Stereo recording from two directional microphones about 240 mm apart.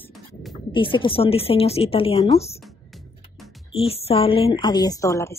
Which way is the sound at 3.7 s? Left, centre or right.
Left.